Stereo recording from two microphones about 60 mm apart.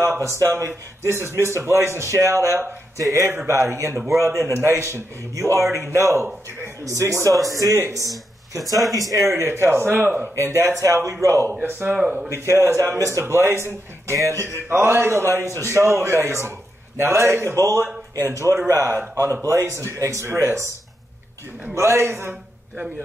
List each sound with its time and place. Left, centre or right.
0.2 s a man's voice: right
6.8 s a man's voice: right
7.5 s speech: right
9.2 s speech: right
10.3 s a man's voice: right
10.8 s a man's voice: right
11.8 s speech: right
12.3 s a man's voice: right
14.1 s a man's voice: right
17.6 s a man's voice: right
18.3 s a man's voice: right
20.2 s a man's voice: right
21.7 s a man's voice: right